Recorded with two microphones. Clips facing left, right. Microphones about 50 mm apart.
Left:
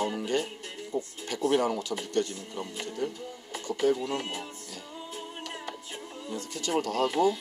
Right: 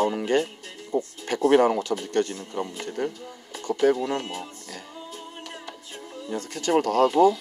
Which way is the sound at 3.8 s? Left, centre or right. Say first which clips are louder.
Right 4 dB; right.